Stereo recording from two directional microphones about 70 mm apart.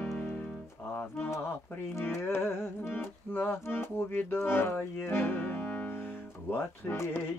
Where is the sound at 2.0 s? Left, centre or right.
Left.